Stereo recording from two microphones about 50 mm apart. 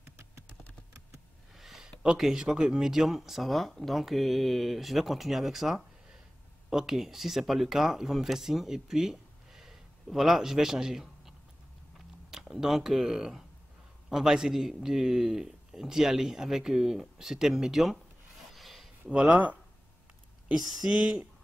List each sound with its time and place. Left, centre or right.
1.6 s a man's voice: centre
18.5 s a sound: centre
19.0 s speech: right
20.5 s a man's voice: centre